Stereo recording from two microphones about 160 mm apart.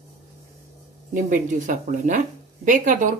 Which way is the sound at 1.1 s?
55° right (ahead or behind).